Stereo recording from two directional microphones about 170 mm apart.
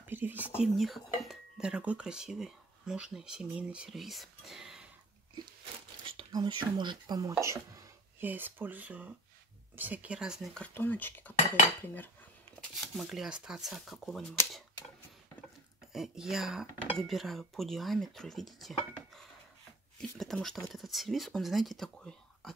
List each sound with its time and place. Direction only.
0.0 s speech: 10° right (ahead or behind)
0.6 s speech: centre (ahead or behind)
6.1 s speech: 25° right (ahead or behind); by 11.3 s 10° left (ahead or behind)
11.8 s cutlery: 10° left (ahead or behind)
12.9 s speech: centre (ahead or behind)
15.9 s speech: centre (ahead or behind)
20.0 s speech: centre (ahead or behind)